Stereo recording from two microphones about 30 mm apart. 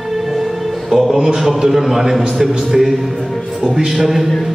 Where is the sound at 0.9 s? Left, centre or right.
Centre.